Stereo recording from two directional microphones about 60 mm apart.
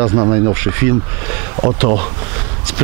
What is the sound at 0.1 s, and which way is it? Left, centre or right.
Speech, right.